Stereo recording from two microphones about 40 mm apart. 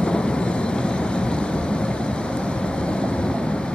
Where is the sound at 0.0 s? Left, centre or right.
Left.